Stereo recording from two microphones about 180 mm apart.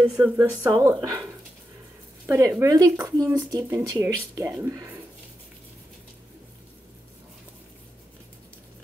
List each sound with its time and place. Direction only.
0.2 s speech: 15° right (ahead or behind)
2.2 s speech: 15° right (ahead or behind)